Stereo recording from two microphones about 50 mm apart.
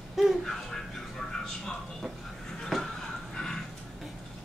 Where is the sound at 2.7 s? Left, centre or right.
Centre.